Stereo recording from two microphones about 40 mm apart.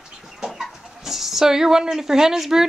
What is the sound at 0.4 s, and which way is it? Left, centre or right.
Speech, centre.